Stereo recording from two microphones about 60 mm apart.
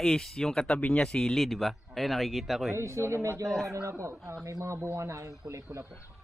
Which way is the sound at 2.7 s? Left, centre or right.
Right.